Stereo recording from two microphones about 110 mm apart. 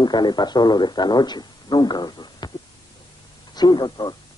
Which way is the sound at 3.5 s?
40° left (ahead or behind).